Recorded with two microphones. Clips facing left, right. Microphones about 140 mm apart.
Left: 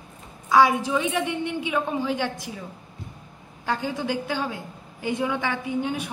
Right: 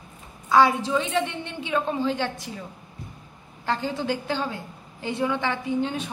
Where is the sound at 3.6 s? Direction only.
10° left (ahead or behind).